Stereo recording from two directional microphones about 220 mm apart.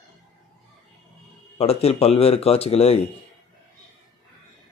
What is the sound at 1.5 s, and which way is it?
A man's voice, 30° left (ahead or behind).